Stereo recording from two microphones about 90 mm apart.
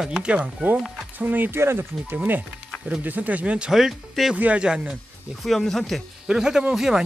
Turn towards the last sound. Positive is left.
turn(degrees=-5)  # may be behind; listen again after turning